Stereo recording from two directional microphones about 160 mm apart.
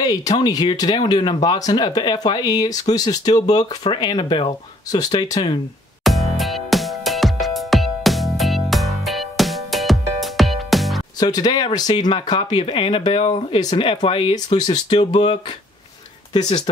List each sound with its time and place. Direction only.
0.0 s speech: 25° left (ahead or behind)
6.0 s music: centre (ahead or behind)
11.1 s speech: 25° left (ahead or behind)
16.3 s speech: 25° left (ahead or behind)